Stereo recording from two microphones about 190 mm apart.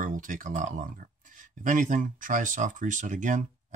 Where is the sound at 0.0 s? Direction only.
45° right (ahead or behind).